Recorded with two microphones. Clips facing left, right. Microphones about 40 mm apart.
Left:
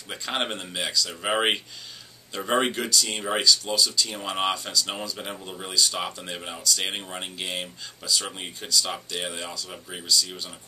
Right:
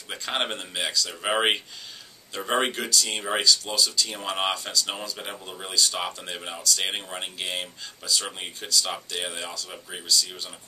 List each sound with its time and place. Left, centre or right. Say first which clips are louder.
0.1 s speech: even; centre